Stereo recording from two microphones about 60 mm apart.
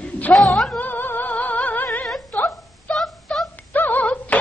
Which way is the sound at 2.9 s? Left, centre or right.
Centre.